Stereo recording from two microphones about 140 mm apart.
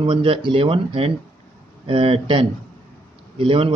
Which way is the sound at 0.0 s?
35° right (ahead or behind).